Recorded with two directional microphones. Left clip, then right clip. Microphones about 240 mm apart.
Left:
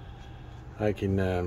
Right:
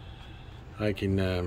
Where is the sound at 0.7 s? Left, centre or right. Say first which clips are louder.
Left 1 dB; centre.